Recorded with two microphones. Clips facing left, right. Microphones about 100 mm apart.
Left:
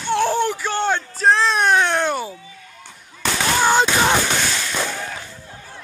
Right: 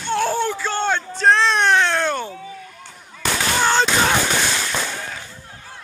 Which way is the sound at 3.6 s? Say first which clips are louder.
Left 2 dB; 10° left (ahead or behind).